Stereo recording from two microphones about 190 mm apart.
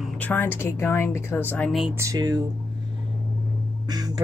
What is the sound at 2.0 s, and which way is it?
Speech, 20° right (ahead or behind).